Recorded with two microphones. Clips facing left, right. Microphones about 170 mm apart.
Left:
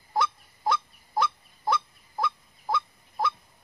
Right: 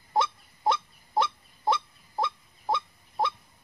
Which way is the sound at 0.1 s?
20° right (ahead or behind).